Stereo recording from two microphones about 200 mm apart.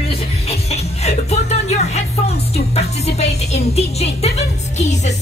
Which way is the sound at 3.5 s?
30° left (ahead or behind).